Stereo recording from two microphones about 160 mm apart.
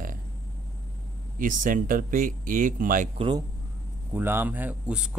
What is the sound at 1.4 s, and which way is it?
Speech, 60° right (ahead or behind).